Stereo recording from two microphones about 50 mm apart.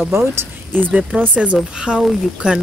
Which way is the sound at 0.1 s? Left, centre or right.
Right.